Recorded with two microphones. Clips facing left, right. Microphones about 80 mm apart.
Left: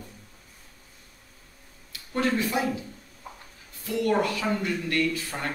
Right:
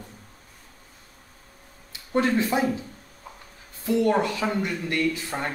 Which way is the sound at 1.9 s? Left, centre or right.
Right.